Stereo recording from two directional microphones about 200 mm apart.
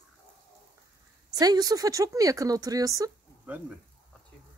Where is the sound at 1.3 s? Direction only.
20° right (ahead or behind).